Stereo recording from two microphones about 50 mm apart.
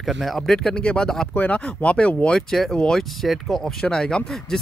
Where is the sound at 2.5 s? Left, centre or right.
Centre.